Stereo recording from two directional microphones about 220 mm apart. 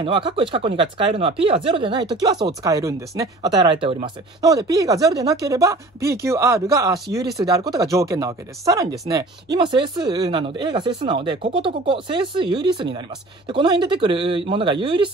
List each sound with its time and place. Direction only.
0.0 s speech: 25° right (ahead or behind)